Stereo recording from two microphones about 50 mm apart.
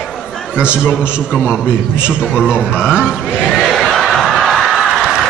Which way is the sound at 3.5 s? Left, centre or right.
Centre.